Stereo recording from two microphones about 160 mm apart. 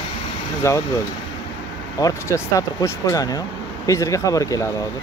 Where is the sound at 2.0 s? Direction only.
20° left (ahead or behind).